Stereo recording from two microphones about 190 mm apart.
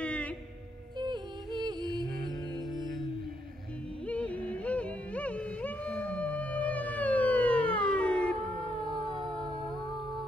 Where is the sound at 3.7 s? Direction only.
5° left (ahead or behind).